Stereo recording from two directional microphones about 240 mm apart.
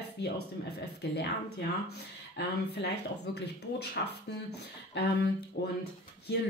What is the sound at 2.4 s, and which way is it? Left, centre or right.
Speech, left.